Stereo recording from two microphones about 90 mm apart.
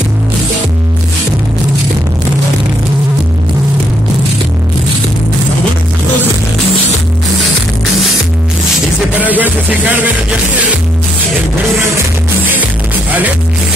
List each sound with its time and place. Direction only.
9.1 s music: 20° right (ahead or behind)